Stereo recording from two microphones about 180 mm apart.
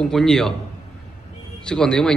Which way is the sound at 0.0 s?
5° left (ahead or behind).